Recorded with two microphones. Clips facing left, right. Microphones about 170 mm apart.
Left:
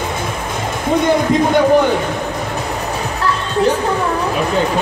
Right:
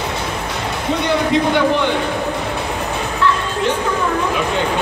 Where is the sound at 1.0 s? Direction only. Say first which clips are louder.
Left 1 dB; 45° left (ahead or behind).